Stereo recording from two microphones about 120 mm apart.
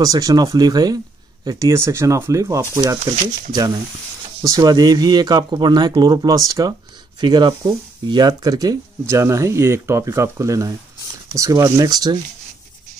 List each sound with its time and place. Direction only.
0.0 s speech: 30° right (ahead or behind)